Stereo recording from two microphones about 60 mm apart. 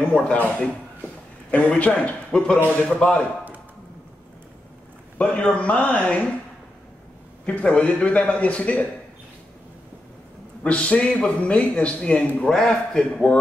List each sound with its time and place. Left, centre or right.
0.3 s a man's voice: centre
5.1 s a man's voice: left
7.4 s a man's voice: centre
10.6 s a man's voice: centre